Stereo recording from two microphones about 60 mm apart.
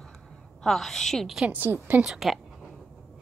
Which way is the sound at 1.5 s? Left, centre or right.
Right.